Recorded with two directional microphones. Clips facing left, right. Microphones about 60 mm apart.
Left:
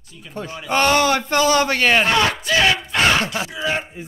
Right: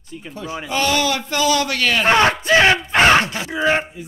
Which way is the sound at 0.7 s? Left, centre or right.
Left.